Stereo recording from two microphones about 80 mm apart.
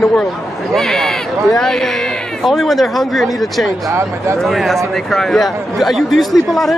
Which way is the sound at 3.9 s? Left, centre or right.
Right.